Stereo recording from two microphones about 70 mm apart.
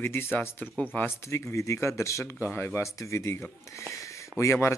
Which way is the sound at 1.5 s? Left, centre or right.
Left.